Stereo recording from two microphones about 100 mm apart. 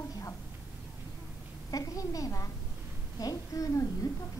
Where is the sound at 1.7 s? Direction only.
35° left (ahead or behind).